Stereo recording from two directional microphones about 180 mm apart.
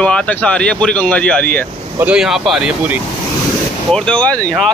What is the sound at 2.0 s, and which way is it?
Speech, 5° right (ahead or behind).